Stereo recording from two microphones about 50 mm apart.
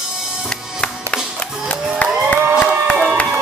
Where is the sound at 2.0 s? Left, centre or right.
Left.